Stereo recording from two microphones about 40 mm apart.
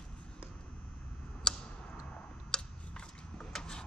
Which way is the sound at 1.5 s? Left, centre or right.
Left.